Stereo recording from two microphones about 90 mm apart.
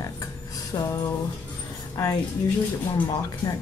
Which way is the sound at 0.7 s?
55° left (ahead or behind).